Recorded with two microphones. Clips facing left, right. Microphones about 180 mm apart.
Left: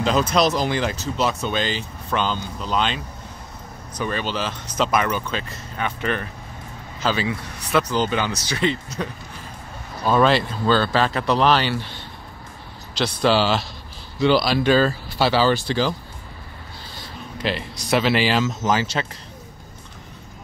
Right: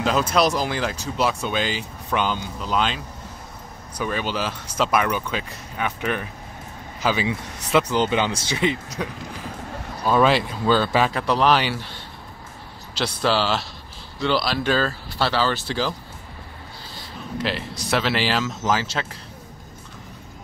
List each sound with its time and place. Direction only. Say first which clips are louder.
0.0 s speech: left 1 dB; 5° right (ahead or behind)
12.9 s speech: left 3 dB; 5° right (ahead or behind)
17.4 s speech: left 1 dB; centre (ahead or behind)